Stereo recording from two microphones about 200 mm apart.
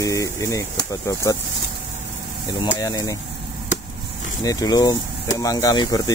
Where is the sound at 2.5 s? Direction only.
20° left (ahead or behind).